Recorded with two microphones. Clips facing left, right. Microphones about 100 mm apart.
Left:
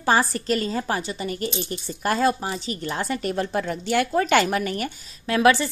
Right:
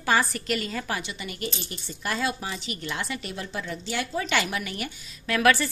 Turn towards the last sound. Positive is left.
turn(degrees=25)  # may be behind; listen again after turning